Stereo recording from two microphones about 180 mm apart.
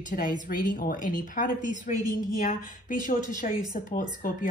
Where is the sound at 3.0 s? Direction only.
50° left (ahead or behind).